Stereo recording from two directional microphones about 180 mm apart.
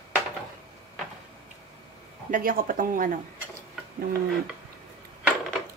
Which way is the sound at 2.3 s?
50° right (ahead or behind).